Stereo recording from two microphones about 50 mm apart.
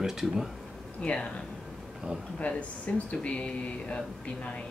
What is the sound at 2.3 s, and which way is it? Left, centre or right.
Speech, left.